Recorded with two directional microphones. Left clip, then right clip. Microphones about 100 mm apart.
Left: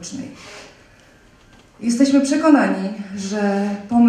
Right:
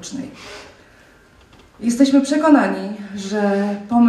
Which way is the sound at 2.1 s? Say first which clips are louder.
Even; 15° left (ahead or behind).